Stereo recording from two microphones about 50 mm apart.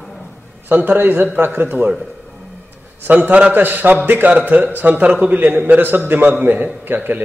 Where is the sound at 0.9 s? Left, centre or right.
Right.